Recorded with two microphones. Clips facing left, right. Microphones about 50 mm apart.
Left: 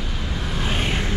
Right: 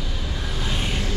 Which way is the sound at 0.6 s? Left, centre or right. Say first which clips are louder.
Left 3 dB; left.